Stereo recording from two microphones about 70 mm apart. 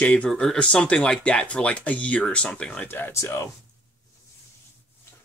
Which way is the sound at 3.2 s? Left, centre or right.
Left.